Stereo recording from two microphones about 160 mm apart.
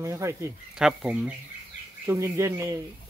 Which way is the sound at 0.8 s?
5° right (ahead or behind).